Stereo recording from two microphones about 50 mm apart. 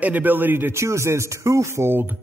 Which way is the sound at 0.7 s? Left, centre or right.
Right.